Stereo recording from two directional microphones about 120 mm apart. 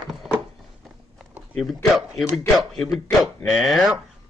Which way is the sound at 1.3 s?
Centre (ahead or behind).